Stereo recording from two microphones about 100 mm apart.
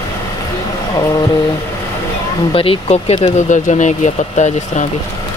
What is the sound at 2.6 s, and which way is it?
Speech, 80° left.